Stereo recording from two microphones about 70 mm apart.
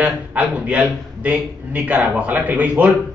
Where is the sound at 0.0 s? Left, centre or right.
Right.